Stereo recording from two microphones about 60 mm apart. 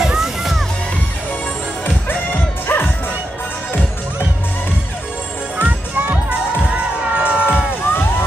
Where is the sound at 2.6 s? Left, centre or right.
Left.